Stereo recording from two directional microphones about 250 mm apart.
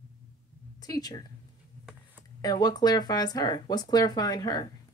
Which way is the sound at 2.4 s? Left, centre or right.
Centre.